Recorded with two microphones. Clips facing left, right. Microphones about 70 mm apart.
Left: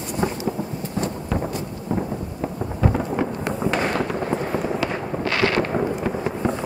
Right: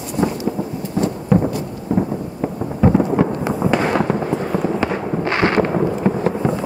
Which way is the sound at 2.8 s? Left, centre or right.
Centre.